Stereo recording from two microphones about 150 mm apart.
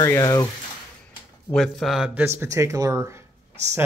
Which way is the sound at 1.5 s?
Centre (ahead or behind).